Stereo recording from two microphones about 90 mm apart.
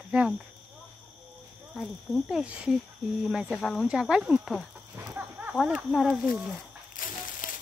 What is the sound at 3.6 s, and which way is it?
Speech, 5° left (ahead or behind).